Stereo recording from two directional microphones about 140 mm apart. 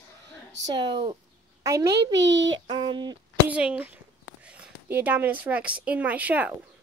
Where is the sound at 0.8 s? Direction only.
35° right (ahead or behind).